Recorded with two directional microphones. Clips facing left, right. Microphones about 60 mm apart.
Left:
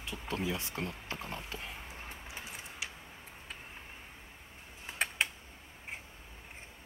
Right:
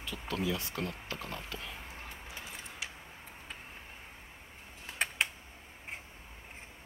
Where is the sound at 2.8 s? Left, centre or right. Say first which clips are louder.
Even; centre.